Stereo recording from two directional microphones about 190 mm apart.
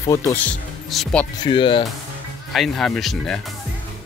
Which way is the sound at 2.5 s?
Centre (ahead or behind).